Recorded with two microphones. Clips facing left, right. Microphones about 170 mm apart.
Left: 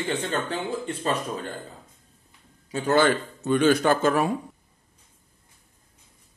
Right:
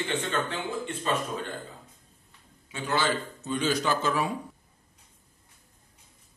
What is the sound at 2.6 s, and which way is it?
Speech, 40° left (ahead or behind).